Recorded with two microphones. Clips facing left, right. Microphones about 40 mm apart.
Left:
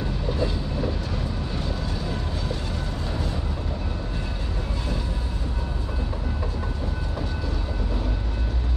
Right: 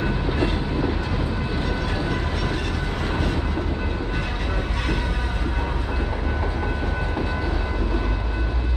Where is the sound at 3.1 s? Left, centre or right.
Right.